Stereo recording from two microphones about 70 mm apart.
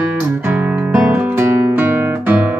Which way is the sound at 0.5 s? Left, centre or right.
Right.